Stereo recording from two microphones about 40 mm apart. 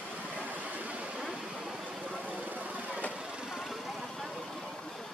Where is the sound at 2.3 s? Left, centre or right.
Right.